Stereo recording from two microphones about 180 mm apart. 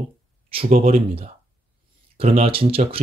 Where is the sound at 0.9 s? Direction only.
30° right (ahead or behind).